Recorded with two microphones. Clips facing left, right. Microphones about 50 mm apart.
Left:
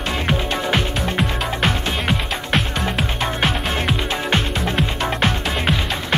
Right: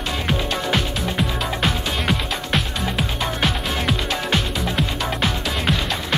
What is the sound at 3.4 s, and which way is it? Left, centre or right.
Music, left.